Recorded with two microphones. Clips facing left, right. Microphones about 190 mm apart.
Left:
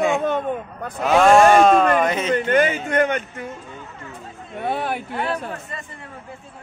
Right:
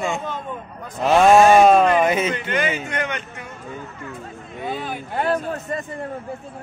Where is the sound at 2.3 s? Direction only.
45° left (ahead or behind).